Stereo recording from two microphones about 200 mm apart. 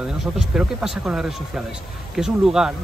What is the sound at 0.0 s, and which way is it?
Speech, 5° right (ahead or behind).